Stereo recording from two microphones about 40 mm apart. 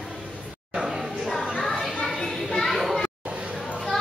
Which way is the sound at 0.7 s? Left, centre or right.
Centre.